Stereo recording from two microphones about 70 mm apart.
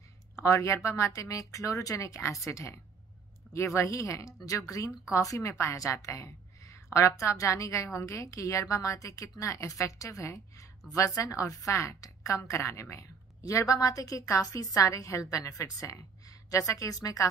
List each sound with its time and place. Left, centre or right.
0.4 s a woman's voice: left